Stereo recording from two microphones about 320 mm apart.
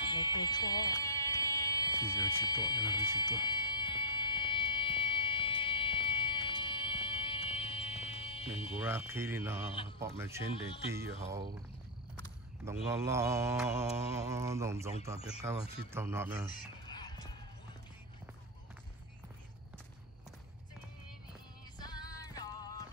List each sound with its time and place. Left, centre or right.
0.1 s buzzer: centre
2.4 s speech: centre
3.2 s fire alarm: centre
8.7 s mantra: centre
12.9 s mantra: centre
16.9 s clip-clop: centre
21.7 s music: centre